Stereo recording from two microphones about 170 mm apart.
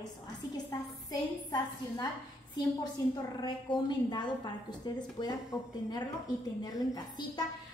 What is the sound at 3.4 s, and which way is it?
A woman's voice, 25° left (ahead or behind).